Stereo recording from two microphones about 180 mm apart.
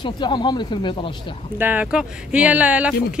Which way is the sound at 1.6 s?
10° right (ahead or behind).